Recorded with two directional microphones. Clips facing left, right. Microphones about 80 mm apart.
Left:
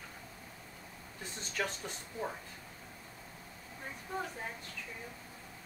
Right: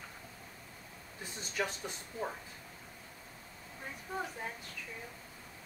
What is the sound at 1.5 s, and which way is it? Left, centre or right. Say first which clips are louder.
Speech: right 1 dB; centre.